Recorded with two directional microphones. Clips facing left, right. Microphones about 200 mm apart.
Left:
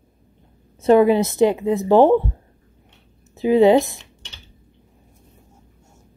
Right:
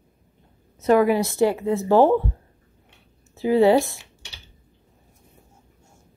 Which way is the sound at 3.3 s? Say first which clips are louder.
Left 3 dB; 15° left (ahead or behind).